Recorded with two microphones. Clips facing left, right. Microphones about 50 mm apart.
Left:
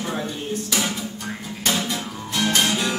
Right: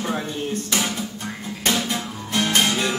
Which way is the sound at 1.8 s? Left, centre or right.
Centre.